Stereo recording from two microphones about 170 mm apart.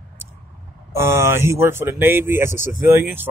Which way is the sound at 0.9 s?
15° right (ahead or behind).